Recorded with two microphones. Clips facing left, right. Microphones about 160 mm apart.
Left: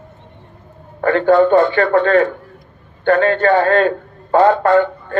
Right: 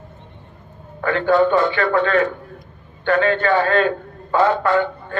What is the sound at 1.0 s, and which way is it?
A man's voice, 45° left (ahead or behind).